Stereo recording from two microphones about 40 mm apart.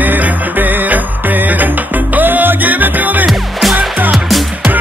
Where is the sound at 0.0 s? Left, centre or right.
Right.